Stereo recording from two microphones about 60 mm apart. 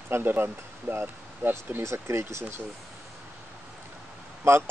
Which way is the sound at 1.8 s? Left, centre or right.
Right.